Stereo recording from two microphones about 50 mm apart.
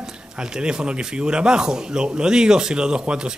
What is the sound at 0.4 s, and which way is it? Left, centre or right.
A man's voice, centre.